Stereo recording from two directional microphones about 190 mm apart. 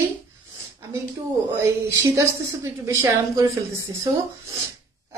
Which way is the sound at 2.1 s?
15° right (ahead or behind).